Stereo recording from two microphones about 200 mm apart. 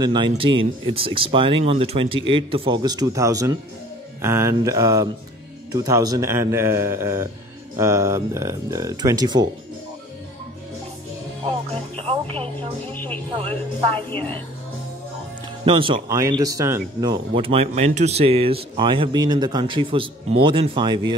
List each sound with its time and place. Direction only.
0.0 s speech: 20° right (ahead or behind)
11.4 s music: 30° right (ahead or behind)
12.9 s a woman's voice: 10° left (ahead or behind)
15.6 s speech: 25° right (ahead or behind)
17.4 s speech: 30° right (ahead or behind)